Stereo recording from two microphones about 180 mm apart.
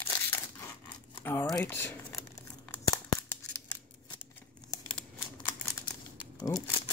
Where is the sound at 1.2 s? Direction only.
15° left (ahead or behind).